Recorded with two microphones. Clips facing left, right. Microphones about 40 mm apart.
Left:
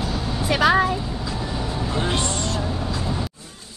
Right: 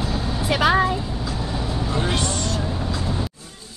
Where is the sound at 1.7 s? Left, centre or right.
Centre.